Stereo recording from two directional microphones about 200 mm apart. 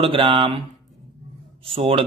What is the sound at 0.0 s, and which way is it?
Speech, 25° right (ahead or behind).